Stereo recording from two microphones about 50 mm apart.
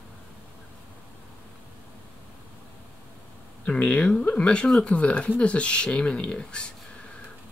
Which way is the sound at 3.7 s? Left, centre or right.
Left.